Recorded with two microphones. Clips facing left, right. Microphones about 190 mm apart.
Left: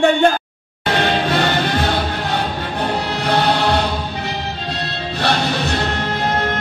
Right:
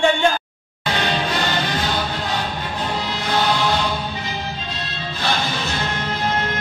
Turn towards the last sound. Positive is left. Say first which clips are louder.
# left 3 dB
turn(degrees=65)  # may be behind; listen again after turning